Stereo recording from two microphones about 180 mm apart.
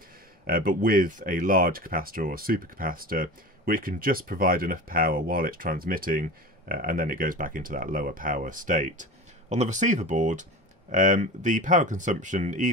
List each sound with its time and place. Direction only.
0.5 s speech: 55° right (ahead or behind)